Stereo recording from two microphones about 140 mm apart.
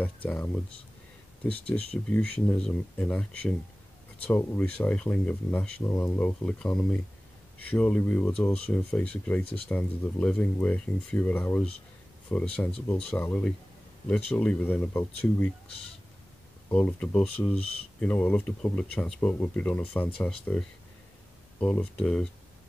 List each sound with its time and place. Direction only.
0.0 s speech: 10° left (ahead or behind)
1.7 s speech: 20° left (ahead or behind)
16.7 s speech: 10° left (ahead or behind)